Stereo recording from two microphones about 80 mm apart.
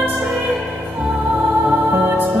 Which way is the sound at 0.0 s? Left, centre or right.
Centre.